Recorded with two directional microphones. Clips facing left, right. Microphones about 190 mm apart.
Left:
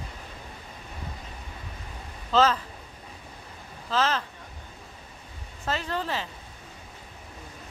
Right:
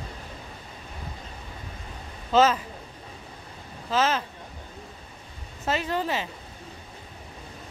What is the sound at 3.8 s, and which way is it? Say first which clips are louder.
Speech: right 2 dB; 15° right (ahead or behind).